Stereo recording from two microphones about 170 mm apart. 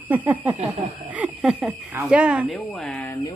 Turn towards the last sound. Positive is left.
turn(degrees=5)  # may be behind; listen again after turning